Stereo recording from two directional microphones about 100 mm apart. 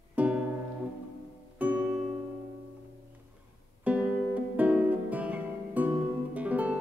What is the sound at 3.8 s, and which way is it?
Music, 15° right (ahead or behind).